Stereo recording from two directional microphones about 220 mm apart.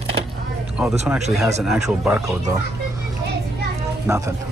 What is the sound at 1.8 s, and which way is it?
Speech, 10° right (ahead or behind).